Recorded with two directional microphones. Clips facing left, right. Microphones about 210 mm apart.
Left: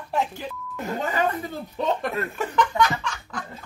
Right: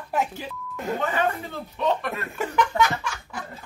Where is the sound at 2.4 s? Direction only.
10° right (ahead or behind).